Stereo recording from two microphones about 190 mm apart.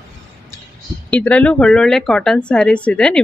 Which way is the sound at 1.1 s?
5° left (ahead or behind).